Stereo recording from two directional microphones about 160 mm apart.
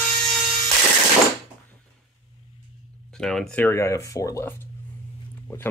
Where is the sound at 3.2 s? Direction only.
5° left (ahead or behind).